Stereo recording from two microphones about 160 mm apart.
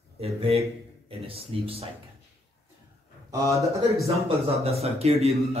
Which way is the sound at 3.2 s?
20° right (ahead or behind).